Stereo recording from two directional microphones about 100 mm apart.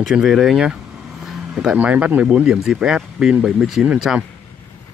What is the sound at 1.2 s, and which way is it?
Vehicle, 5° right (ahead or behind).